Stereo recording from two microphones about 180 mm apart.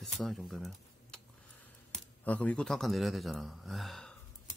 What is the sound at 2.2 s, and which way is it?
Speech, 5° left (ahead or behind).